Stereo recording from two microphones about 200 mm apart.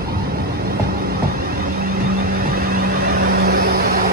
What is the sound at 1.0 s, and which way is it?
Vehicle, 50° right (ahead or behind).